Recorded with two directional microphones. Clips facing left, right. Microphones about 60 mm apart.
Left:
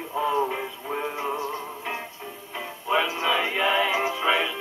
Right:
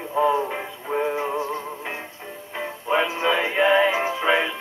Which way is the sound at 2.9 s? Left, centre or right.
Right.